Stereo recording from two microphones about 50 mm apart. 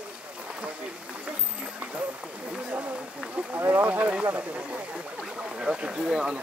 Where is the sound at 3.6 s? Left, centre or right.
Right.